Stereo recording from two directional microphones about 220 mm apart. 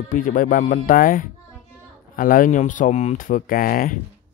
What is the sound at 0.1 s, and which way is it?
Speech, 35° left (ahead or behind).